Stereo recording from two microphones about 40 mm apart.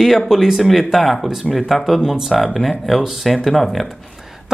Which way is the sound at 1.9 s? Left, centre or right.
Centre.